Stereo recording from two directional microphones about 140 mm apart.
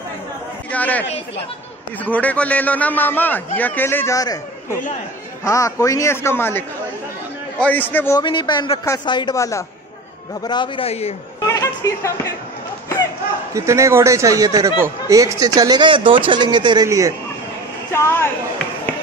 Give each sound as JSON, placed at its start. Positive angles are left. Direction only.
{"t": 0.7, "sound": "chatter", "side_deg": 10}
{"t": 2.0, "sound": "a man's voice", "side_deg": 10}
{"t": 5.4, "sound": "a man's voice", "side_deg": 20}
{"t": 7.6, "sound": "a man's voice", "side_deg": 15}
{"t": 8.2, "sound": "a man's voice", "side_deg": 35}
{"t": 10.4, "sound": "a man's voice", "side_deg": 35}
{"t": 10.9, "sound": "speech", "side_deg": 45}
{"t": 11.4, "sound": "a sound", "side_deg": 25}
{"t": 13.5, "sound": "speech", "side_deg": -20}
{"t": 17.9, "sound": "a man's voice", "side_deg": 20}